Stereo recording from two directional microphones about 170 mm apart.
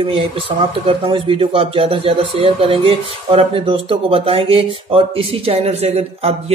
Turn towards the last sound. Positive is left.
turn(degrees=-35)  # may be behind; listen again after turning